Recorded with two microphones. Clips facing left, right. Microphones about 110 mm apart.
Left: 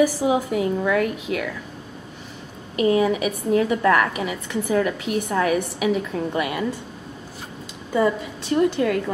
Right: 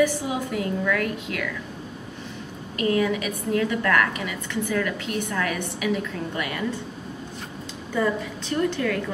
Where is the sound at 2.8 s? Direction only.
20° left (ahead or behind).